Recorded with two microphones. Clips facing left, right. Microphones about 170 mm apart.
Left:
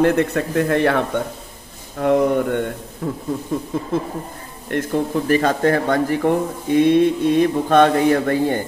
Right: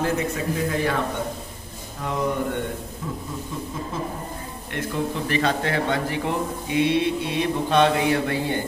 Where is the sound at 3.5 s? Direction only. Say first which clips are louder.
Left 9 dB; 50° left (ahead or behind).